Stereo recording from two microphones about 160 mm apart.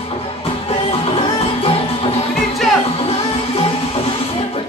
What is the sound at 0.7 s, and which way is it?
Music, 40° left (ahead or behind).